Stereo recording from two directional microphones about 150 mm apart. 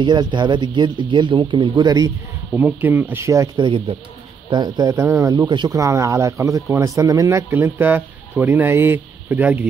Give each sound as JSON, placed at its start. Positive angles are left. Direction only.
{"t": 0.0, "sound": "speech", "side_deg": -30}
{"t": 2.5, "sound": "speech", "side_deg": -15}
{"t": 3.5, "sound": "speech", "side_deg": -35}